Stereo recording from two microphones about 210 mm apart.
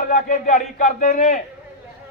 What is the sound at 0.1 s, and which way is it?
A man's voice, 40° left (ahead or behind).